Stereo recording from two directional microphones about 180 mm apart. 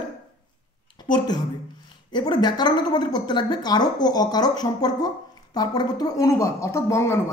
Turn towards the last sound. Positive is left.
turn(degrees=15)  # may be behind; listen again after turning